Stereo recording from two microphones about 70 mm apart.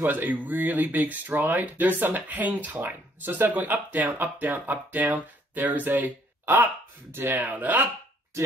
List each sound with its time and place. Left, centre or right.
0.0 s speech: right